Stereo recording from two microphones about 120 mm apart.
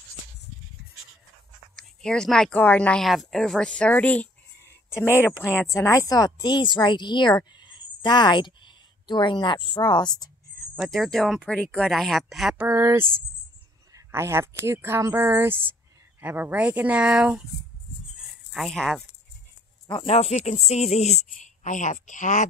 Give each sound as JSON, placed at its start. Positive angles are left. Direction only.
{"t": 1.8, "sound": "speech", "side_deg": 5}
{"t": 7.5, "sound": "a sound", "side_deg": 40}
{"t": 10.8, "sound": "speech", "side_deg": 0}
{"t": 12.5, "sound": "speech", "side_deg": -20}
{"t": 18.5, "sound": "speech", "side_deg": 0}
{"t": 20.1, "sound": "speech", "side_deg": 65}